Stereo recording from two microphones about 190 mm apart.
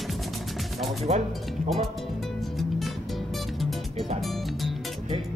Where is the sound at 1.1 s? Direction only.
35° right (ahead or behind).